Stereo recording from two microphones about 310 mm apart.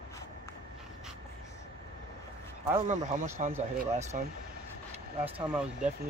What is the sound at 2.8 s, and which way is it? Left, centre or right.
Speech, right.